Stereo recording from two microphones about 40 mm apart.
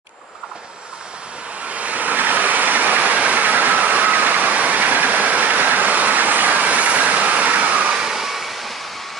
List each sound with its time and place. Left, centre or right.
1.7 s vehicle: right
7.9 s vehicle: centre